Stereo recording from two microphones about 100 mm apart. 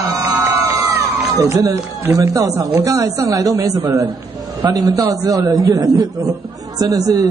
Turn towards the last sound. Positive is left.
turn(degrees=-40)  # may be behind; listen again after turning